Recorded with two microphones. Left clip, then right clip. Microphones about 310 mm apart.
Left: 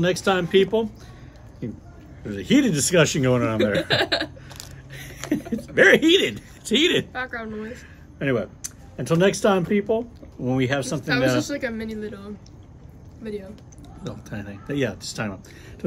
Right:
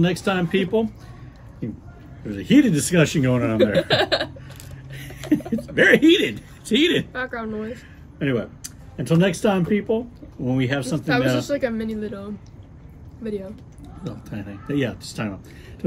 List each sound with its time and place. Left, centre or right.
0.0 s speech: centre
2.2 s speech: centre
3.5 s speech: centre
4.6 s a sound: centre
5.8 s speech: centre
7.1 s speech: centre
8.2 s speech: centre
11.0 s speech: centre
14.0 s speech: centre